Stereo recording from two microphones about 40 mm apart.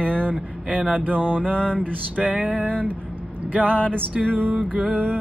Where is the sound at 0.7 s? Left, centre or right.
Right.